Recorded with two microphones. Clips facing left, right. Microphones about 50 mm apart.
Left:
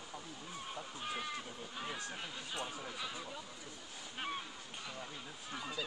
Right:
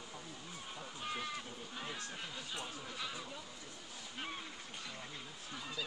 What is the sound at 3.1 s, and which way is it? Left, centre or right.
Speech, centre.